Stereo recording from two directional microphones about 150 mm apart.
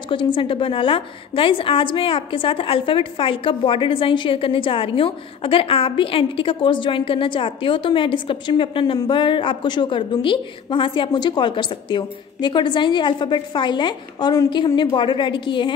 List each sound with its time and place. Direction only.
0.1 s a woman's voice: 35° left (ahead or behind)